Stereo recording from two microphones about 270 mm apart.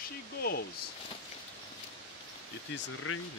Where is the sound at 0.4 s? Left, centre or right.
Left.